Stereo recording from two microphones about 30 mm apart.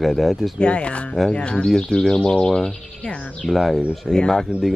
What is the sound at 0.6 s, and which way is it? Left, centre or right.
Speech, left.